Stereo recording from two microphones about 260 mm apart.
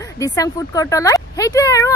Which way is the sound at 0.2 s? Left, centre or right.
Centre.